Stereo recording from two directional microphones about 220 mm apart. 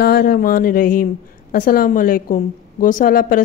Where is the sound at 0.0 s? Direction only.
45° left (ahead or behind).